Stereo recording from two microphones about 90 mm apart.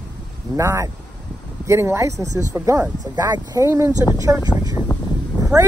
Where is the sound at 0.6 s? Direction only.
35° right (ahead or behind).